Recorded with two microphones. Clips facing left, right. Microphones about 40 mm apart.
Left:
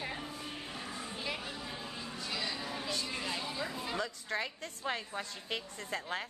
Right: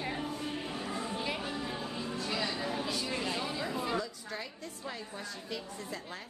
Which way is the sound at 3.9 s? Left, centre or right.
Left.